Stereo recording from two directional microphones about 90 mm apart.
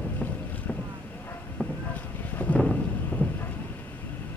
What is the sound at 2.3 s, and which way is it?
Thunder, 15° left (ahead or behind).